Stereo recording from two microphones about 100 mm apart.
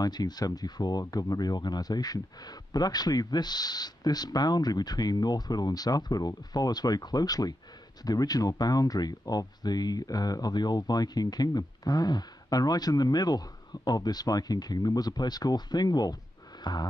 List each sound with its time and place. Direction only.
0.0 s speech: 40° left (ahead or behind)
16.6 s music: 45° left (ahead or behind)